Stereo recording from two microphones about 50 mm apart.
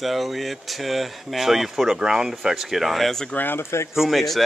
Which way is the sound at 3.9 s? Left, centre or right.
Centre.